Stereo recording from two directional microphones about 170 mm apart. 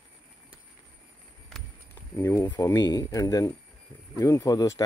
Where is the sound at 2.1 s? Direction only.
15° left (ahead or behind).